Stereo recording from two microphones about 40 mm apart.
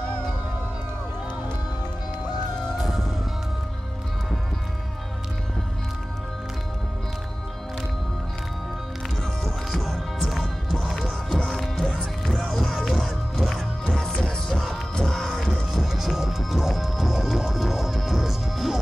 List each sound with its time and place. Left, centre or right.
2.8 s music: centre
9.4 s music: centre
11.2 s music: centre
11.6 s music: centre
13.8 s music: centre
14.5 s music: centre
15.7 s music: centre